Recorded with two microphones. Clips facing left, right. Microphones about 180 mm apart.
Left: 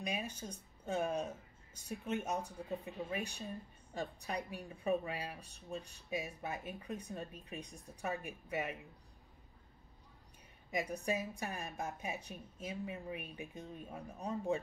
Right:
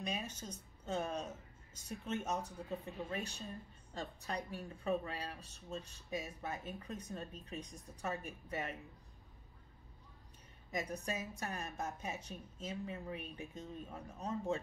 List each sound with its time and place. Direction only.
0.0 s speech: 10° left (ahead or behind)
10.7 s speech: 10° left (ahead or behind)